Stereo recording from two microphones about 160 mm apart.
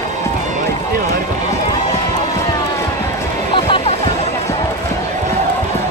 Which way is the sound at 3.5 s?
35° left (ahead or behind).